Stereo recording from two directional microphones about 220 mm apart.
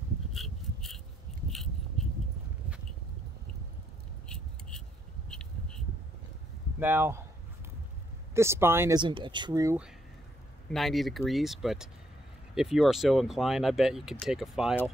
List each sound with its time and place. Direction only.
0.3 s rub: centre (ahead or behind)
1.5 s a sound: centre (ahead or behind)
4.3 s keys jangling: 5° left (ahead or behind)
6.8 s speech: 10° right (ahead or behind)
8.4 s speech: 10° right (ahead or behind)
10.7 s speech: centre (ahead or behind)